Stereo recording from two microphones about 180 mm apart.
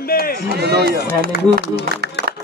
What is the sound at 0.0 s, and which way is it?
Speech, 55° left (ahead or behind).